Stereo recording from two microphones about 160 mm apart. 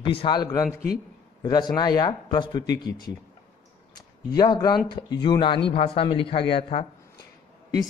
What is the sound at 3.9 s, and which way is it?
Speech, 25° left (ahead or behind).